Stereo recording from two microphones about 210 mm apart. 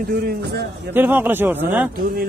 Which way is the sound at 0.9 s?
10° right (ahead or behind).